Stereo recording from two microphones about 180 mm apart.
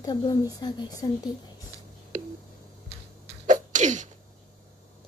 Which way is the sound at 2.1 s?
45° right (ahead or behind).